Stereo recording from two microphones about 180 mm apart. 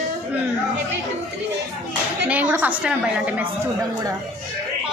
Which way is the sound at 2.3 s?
10° right (ahead or behind).